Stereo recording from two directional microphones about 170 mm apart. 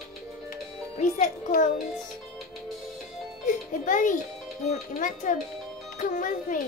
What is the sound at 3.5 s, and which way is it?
A child's voice, 50° left (ahead or behind).